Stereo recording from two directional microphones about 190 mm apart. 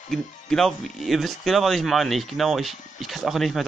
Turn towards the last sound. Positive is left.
turn(degrees=0)  # may be behind; listen again after turning